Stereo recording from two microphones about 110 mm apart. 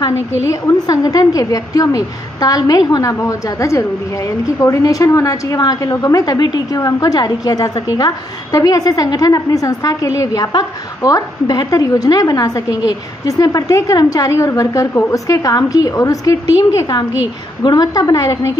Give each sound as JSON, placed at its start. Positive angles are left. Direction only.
{"t": 0.5, "sound": "a woman's voice", "side_deg": 35}
{"t": 17.6, "sound": "a woman's voice", "side_deg": 35}